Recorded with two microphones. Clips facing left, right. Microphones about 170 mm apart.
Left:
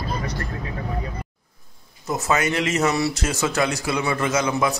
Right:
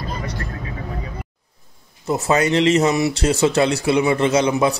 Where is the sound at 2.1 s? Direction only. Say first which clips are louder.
Right 4 dB; 30° right (ahead or behind).